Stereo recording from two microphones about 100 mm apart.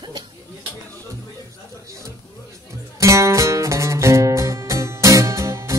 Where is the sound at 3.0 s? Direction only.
30° right (ahead or behind).